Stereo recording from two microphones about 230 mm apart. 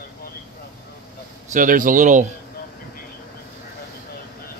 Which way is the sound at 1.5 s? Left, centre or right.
Right.